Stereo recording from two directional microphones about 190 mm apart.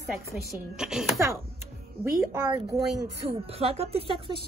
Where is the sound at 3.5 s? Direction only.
30° right (ahead or behind).